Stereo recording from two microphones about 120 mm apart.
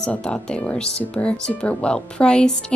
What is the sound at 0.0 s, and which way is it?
Speech, 5° left (ahead or behind).